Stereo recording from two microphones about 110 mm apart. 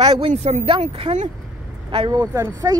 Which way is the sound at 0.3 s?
85° right.